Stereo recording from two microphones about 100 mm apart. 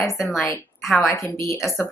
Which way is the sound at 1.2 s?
35° left (ahead or behind).